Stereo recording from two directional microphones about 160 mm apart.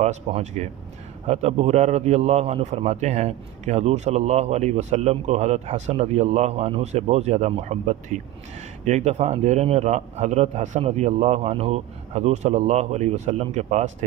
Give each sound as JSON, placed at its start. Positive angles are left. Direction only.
{"t": 0.0, "sound": "a man's voice", "side_deg": -45}